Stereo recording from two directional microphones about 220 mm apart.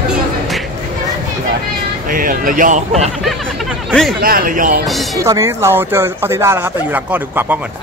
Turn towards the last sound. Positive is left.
turn(degrees=-10)  # may be behind; listen again after turning